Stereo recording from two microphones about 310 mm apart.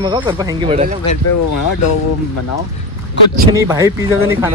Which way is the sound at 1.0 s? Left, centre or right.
Left.